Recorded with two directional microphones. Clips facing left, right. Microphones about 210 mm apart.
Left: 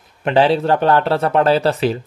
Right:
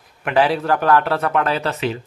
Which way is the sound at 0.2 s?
25° left (ahead or behind).